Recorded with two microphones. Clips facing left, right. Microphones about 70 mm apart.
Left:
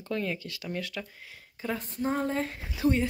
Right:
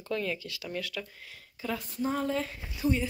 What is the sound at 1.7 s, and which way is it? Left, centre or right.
Speech, left.